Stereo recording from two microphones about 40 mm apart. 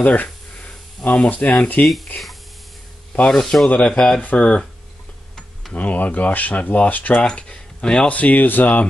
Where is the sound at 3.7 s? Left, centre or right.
Left.